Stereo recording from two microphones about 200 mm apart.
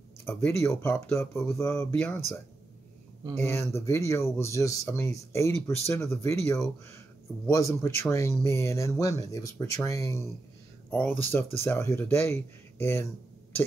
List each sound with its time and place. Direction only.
0.2 s speech: 10° left (ahead or behind)
3.3 s speech: 10° left (ahead or behind)